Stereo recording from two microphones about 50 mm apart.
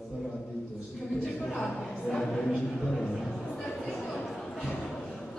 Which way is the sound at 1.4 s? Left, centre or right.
Left.